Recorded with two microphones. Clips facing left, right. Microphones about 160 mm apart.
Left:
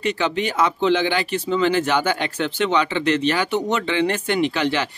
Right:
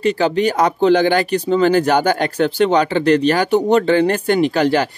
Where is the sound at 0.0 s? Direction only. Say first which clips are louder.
Right 7 dB; 35° right (ahead or behind).